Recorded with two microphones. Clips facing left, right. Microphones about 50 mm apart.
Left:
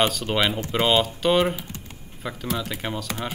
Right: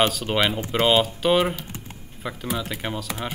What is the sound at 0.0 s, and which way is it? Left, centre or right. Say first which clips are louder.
Speech: right 1 dB; centre.